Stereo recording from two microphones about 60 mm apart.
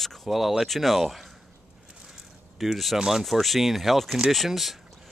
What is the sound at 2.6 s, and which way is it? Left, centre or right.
Speech, centre.